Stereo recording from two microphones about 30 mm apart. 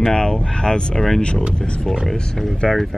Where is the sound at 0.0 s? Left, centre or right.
Left.